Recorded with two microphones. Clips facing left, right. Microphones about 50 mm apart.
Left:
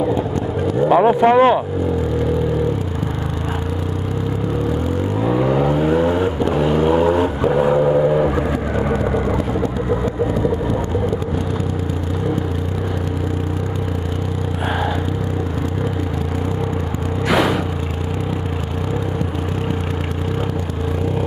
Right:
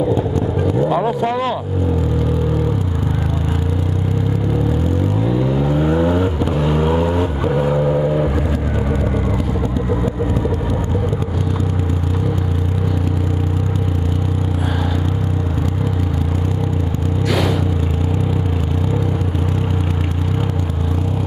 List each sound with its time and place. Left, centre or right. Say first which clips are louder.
0.8 s speech: left 10 dB; left
5.2 s vehicle: left 5 dB; left
5.8 s vehicle: even; centre